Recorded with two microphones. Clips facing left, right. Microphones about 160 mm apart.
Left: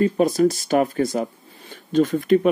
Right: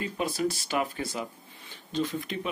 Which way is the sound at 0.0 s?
45° left (ahead or behind).